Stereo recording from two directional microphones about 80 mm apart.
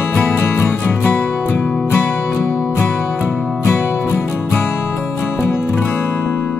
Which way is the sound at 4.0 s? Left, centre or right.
Left.